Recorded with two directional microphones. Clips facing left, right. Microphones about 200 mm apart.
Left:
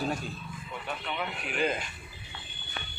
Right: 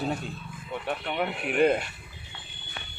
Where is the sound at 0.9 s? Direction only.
60° right (ahead or behind).